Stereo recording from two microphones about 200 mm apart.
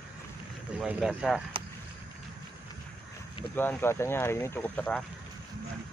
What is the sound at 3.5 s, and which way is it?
Speech, 10° left (ahead or behind).